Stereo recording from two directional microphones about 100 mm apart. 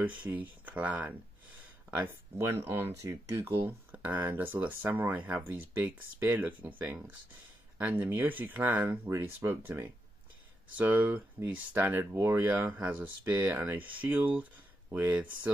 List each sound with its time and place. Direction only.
0.0 s speech: 15° right (ahead or behind)
7.7 s speech: 15° right (ahead or behind)